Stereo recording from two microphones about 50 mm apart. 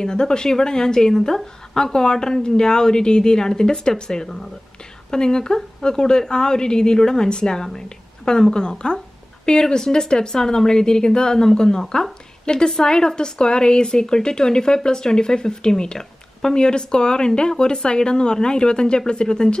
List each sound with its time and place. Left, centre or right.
0.0 s a woman's voice: centre